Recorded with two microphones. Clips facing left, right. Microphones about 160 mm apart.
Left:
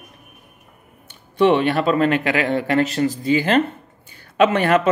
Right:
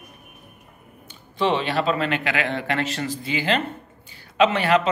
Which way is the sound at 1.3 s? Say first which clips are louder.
Left 6 dB; 55° left (ahead or behind).